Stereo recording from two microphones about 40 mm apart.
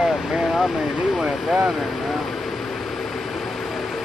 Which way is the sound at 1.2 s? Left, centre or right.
Centre.